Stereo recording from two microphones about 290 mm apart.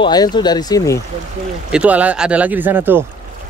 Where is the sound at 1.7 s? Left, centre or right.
Centre.